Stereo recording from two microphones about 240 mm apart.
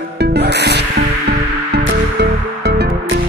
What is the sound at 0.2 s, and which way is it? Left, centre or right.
Music, right.